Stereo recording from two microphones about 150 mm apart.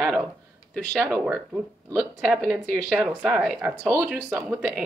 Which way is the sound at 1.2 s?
10° right (ahead or behind).